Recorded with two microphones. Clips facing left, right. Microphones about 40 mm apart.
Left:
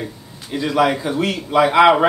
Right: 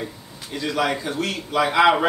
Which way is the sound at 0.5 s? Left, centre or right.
Centre.